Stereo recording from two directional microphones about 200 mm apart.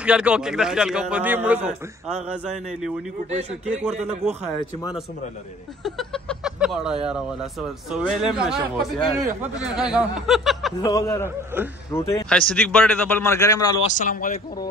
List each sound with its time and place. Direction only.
0.0 s a man's voice: 5° right (ahead or behind)
3.3 s a man's voice: 35° right (ahead or behind)
5.9 s a man's voice: centre (ahead or behind)
10.8 s a man's voice: 15° left (ahead or behind)
11.2 s a man's voice: 10° right (ahead or behind)
11.9 s a man's voice: 15° left (ahead or behind)
13.9 s a man's voice: 40° left (ahead or behind)